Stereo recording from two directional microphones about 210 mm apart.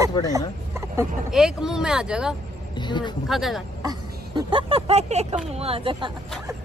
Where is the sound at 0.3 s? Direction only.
15° right (ahead or behind).